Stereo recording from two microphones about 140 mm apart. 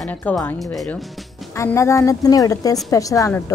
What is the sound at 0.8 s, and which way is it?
Speech, centre (ahead or behind).